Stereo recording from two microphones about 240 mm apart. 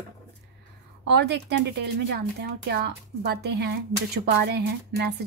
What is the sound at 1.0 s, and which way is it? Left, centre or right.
Speech, right.